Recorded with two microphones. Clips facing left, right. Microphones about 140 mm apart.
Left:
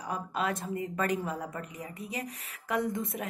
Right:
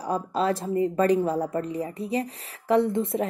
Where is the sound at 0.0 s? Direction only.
30° right (ahead or behind).